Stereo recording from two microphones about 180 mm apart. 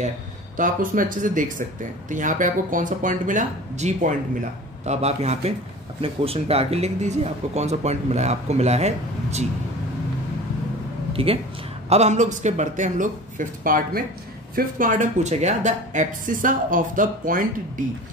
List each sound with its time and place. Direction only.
0.6 s a woman's voice: 50° right (ahead or behind)
11.2 s a woman's voice: 30° right (ahead or behind); by 17.4 s 50° right (ahead or behind)